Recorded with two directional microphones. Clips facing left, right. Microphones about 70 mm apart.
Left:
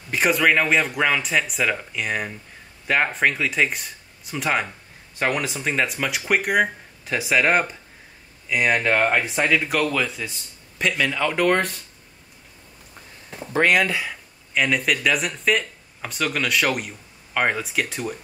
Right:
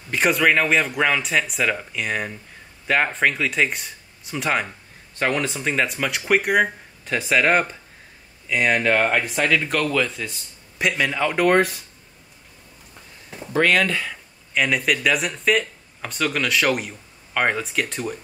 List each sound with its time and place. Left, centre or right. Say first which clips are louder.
0.1 s speech: even; centre
9.3 s speech: even; centre
9.6 s speech: right 1 dB; centre
10.8 s speech: right 1 dB; centre
13.5 s speech: even; centre